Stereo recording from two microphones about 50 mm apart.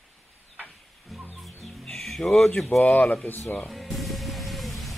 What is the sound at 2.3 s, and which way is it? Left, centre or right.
Speech, centre.